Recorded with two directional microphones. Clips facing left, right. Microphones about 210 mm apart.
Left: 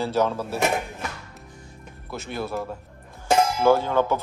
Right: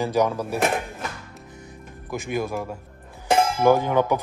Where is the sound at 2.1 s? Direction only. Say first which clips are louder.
Right 3 dB; 15° right (ahead or behind).